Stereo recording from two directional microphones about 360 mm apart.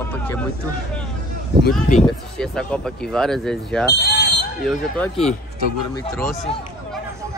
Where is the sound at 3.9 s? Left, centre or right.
Left.